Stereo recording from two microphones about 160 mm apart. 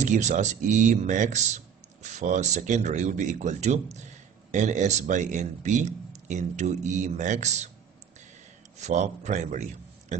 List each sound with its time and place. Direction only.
0.0 s speech: 50° right (ahead or behind)
8.7 s a man's voice: 45° right (ahead or behind)